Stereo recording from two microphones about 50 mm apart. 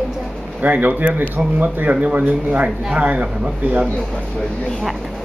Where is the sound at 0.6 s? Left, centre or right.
Right.